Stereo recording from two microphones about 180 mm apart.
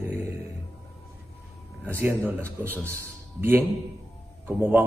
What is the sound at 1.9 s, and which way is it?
A man's voice, 15° right (ahead or behind).